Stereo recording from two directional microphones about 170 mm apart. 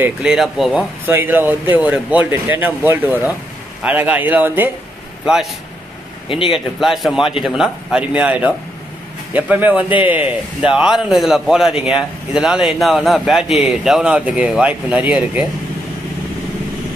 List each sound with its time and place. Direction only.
0.0 s a man's voice: 5° right (ahead or behind)
1.0 s a man's voice: 10° right (ahead or behind)
6.2 s speech: 30° left (ahead or behind)
6.5 s a man's voice: centre (ahead or behind)